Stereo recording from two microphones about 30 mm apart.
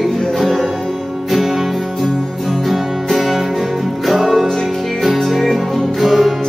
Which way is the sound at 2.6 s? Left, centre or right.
Centre.